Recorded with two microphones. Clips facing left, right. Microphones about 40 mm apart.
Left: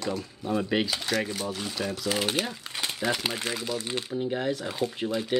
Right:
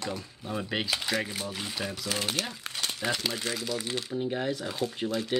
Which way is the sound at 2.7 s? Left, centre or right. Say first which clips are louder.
Left 1 dB; centre.